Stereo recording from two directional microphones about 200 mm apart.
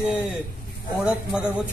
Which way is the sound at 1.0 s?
5° right (ahead or behind).